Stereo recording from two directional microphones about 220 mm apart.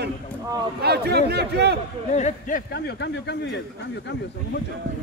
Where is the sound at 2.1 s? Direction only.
30° left (ahead or behind); by 3.6 s 50° left (ahead or behind).